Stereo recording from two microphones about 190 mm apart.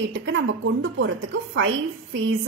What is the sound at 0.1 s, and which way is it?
A woman's voice, 70° right (ahead or behind).